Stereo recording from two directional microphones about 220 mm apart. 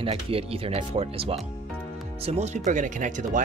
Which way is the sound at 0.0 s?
25° right (ahead or behind).